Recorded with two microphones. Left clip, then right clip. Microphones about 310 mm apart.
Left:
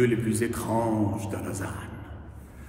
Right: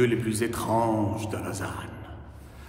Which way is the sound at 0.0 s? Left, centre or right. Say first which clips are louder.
Even; centre.